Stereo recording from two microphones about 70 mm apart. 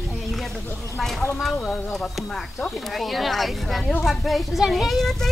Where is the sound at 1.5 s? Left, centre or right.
Centre.